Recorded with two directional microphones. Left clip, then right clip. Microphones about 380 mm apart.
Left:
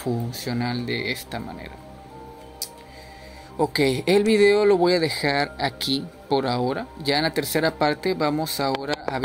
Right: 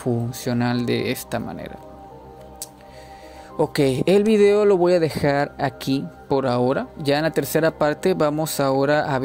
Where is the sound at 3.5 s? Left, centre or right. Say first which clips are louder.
Right 2 dB; right.